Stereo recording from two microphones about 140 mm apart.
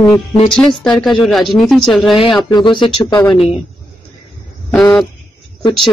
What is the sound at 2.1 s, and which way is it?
Speech, 35° left (ahead or behind).